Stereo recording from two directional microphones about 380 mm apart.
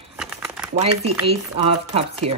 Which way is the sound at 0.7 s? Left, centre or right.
Centre.